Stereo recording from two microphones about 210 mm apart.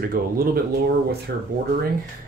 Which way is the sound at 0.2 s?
40° right (ahead or behind).